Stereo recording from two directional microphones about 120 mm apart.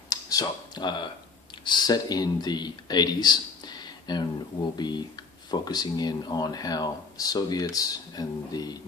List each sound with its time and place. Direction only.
0.1 s speech: 30° left (ahead or behind)